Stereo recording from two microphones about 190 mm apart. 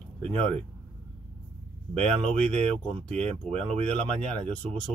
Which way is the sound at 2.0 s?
30° right (ahead or behind).